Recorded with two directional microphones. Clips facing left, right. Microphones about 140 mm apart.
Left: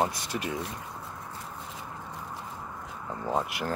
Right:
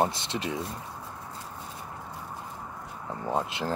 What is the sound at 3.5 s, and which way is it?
Speech, 25° right (ahead or behind).